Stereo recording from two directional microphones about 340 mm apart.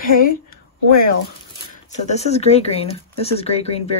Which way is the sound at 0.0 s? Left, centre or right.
Left.